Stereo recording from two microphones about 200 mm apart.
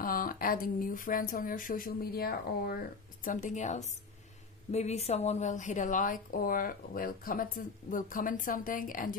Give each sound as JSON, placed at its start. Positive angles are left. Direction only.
{"t": 0.0, "sound": "speech", "side_deg": 45}
{"t": 3.3, "sound": "a woman's voice", "side_deg": 40}